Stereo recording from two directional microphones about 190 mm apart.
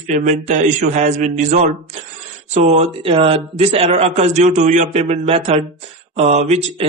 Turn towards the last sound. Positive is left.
turn(degrees=-35)  # may be behind; listen again after turning